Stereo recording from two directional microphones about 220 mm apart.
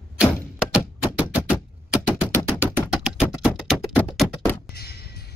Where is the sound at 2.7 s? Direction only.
5° right (ahead or behind).